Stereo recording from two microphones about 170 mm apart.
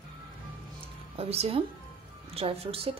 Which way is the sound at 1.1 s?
35° right (ahead or behind).